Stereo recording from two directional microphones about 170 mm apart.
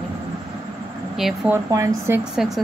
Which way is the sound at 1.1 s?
Centre (ahead or behind).